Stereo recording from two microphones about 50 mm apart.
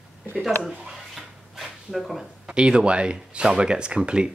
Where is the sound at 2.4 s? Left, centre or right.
Centre.